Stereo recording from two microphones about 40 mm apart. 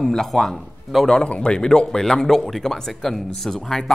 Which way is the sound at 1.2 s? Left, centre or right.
Left.